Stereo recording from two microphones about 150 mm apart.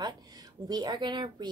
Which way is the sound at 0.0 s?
25° right (ahead or behind).